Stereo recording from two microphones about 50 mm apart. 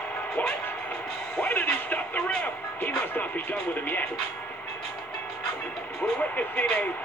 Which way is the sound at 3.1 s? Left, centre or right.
Left.